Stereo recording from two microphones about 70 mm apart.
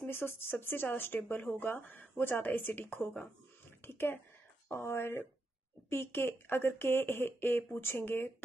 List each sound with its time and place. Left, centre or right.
0.0 s speech: left